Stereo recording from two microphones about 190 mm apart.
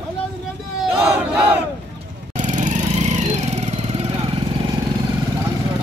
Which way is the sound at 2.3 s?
40° right (ahead or behind).